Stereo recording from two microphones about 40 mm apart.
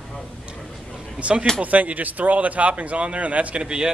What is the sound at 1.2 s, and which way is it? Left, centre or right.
Speech, right.